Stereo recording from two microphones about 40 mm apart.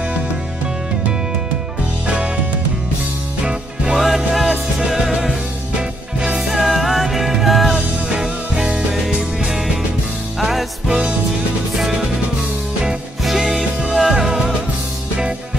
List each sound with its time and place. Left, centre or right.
3.4 s music: centre
4.0 s music: centre
6.6 s music: centre
7.7 s music: centre
10.9 s music: right
13.2 s music: centre